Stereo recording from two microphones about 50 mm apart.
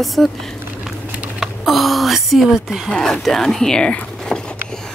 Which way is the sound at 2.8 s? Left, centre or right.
Centre.